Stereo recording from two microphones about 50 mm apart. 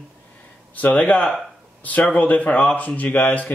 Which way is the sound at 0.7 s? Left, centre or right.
Left.